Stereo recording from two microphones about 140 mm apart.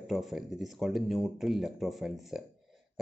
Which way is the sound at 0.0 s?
Centre (ahead or behind).